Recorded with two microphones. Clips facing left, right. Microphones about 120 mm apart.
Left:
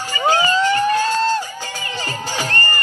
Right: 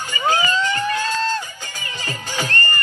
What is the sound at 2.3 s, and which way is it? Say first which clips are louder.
Music: even; 35° left (ahead or behind).